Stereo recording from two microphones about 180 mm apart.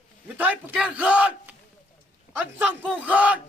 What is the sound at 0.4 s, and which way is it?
A man's voice, 5° right (ahead or behind).